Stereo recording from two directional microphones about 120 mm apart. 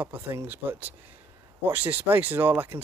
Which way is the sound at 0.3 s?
20° right (ahead or behind).